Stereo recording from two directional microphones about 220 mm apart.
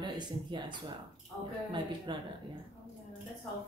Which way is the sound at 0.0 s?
20° right (ahead or behind).